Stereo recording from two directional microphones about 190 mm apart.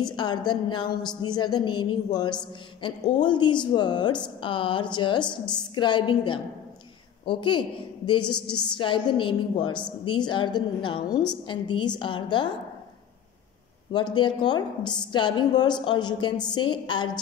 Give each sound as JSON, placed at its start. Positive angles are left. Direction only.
{"t": 0.0, "sound": "a woman's voice", "side_deg": 25}
{"t": 14.1, "sound": "a woman's voice", "side_deg": 25}